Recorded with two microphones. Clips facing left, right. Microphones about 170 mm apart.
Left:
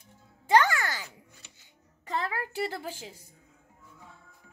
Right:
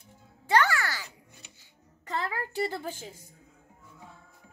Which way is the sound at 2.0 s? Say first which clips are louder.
Left 1 dB; 15° left (ahead or behind).